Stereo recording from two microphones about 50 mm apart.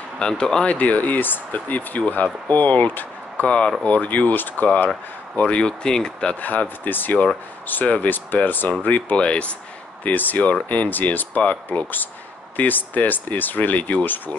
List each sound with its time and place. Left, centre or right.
0.2 s speech: centre
0.7 s speech: left
3.4 s speech: left
6.4 s speech: left
9.1 s speech: left
10.0 s speech: left